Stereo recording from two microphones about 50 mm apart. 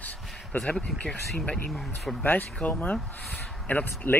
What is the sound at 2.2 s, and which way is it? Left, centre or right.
Speech, left.